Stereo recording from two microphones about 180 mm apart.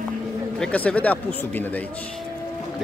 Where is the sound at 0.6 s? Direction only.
5° left (ahead or behind).